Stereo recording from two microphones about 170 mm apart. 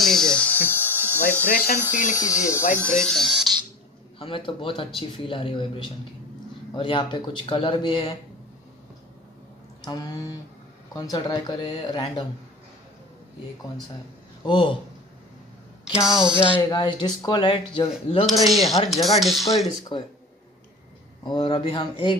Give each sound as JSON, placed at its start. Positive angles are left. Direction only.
{"t": 0.0, "sound": "electric toothbrush", "side_deg": 5}
{"t": 1.5, "sound": "speech", "side_deg": 55}
{"t": 2.8, "sound": "speech", "side_deg": 5}
{"t": 4.2, "sound": "a man's voice", "side_deg": 30}
{"t": 9.8, "sound": "speech", "side_deg": 25}
{"t": 14.4, "sound": "speech", "side_deg": 30}
{"t": 15.9, "sound": "speech", "side_deg": -5}
{"t": 16.7, "sound": "speech", "side_deg": 25}
{"t": 18.4, "sound": "speech", "side_deg": 0}
{"t": 19.9, "sound": "a man's voice", "side_deg": 30}
{"t": 21.2, "sound": "speech", "side_deg": 25}